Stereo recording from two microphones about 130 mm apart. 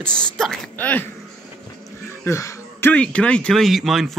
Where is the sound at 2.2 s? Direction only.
25° left (ahead or behind).